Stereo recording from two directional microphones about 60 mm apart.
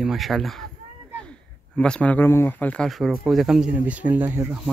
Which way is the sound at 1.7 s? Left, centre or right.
Centre.